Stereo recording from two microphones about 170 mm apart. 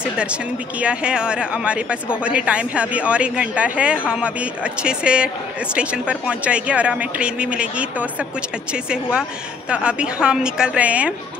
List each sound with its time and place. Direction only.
0.0 s speech: 5° right (ahead or behind)